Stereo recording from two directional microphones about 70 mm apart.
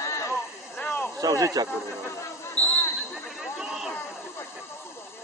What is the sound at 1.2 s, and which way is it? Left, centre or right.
Speech, right.